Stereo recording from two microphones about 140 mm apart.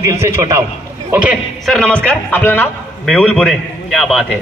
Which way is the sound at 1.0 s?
10° right (ahead or behind).